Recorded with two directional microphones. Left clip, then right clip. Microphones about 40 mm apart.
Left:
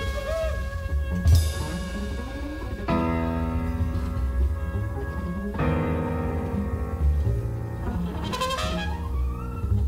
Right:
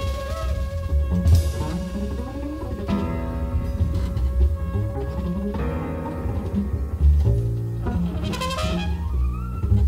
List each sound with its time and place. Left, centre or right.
0.0 s music: centre
5.5 s music: left
8.2 s music: centre